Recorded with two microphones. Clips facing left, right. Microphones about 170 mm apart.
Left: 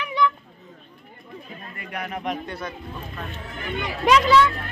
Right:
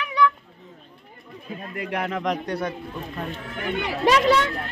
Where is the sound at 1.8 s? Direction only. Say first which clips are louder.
Right 5 dB; 90° right.